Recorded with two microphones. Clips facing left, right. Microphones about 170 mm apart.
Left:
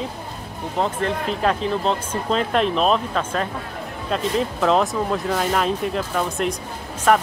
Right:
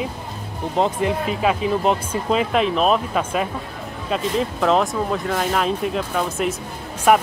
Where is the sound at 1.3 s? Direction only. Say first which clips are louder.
Right 1 dB; 5° right (ahead or behind).